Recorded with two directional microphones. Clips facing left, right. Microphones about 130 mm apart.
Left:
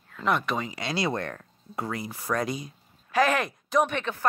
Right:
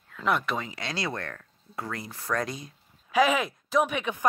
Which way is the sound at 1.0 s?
20° left (ahead or behind).